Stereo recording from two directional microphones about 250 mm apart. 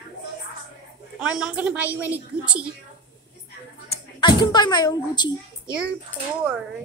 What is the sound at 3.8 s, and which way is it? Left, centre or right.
Speech, centre.